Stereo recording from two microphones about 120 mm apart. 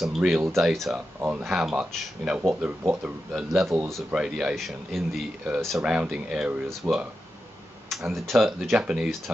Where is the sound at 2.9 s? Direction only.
10° right (ahead or behind).